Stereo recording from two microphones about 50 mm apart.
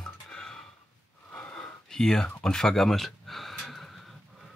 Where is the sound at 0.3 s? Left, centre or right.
Centre.